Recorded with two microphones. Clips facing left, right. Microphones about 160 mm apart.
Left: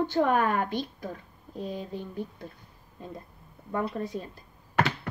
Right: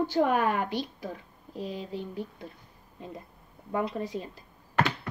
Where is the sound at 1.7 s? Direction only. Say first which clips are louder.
Left 1 dB; 50° left (ahead or behind).